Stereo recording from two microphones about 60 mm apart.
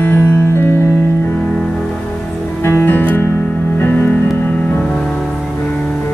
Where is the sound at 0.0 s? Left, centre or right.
Left.